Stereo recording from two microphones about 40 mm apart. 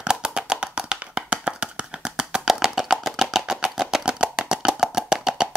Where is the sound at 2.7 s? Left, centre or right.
Centre.